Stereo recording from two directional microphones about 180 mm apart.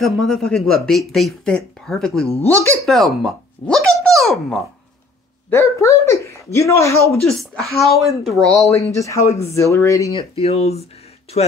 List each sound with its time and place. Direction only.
0.0 s speech: centre (ahead or behind)
5.5 s speech: 15° left (ahead or behind)
7.1 s speech: centre (ahead or behind)
8.6 s speech: 15° left (ahead or behind)
10.3 s speech: 35° left (ahead or behind)